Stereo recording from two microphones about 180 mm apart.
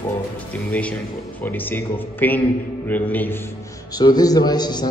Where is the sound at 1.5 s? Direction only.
10° left (ahead or behind).